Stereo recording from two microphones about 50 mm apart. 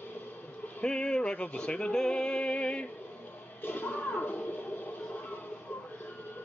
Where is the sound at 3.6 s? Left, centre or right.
Left.